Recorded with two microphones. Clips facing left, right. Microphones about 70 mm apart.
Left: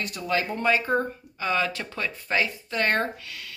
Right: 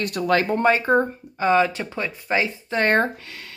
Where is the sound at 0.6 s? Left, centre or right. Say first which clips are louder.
Right 5 dB; right.